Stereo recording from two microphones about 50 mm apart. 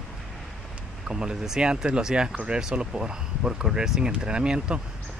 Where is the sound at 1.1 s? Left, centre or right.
Centre.